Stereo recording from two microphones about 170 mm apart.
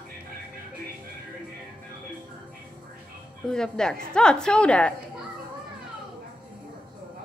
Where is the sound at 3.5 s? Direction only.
5° left (ahead or behind).